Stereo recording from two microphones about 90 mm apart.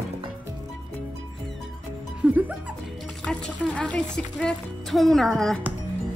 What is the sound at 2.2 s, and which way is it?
Music, 15° right (ahead or behind).